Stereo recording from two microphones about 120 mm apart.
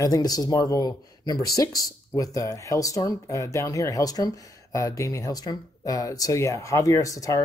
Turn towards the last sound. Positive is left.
turn(degrees=25)  # may be behind; listen again after turning